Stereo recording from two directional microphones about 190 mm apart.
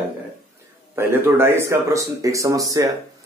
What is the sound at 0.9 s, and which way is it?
Speech, 15° right (ahead or behind).